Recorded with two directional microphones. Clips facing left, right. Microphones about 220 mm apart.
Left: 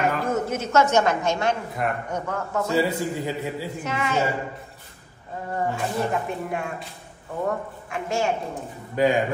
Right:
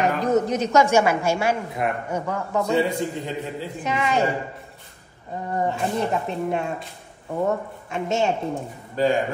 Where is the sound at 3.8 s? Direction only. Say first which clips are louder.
Right 3 dB; 15° right (ahead or behind).